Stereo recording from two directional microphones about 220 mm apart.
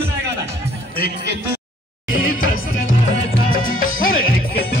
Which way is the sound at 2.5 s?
65° left (ahead or behind).